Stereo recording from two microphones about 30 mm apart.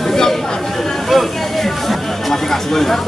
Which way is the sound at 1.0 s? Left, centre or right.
Centre.